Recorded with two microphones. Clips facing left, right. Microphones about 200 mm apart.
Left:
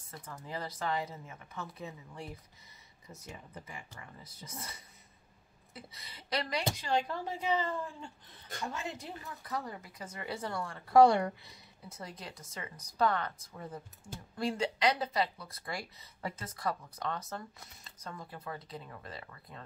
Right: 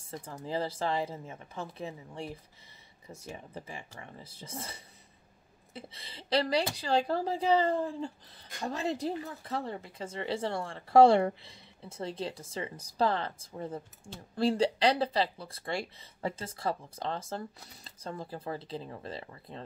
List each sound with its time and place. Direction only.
0.2 s speech: 30° right (ahead or behind)